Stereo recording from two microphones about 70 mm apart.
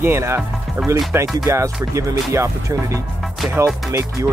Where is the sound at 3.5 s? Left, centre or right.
Right.